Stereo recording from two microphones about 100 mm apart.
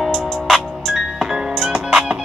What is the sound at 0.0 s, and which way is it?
Music, 5° left (ahead or behind).